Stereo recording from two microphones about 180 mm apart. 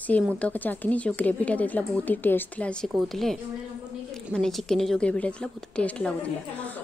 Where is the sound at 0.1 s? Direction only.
10° left (ahead or behind).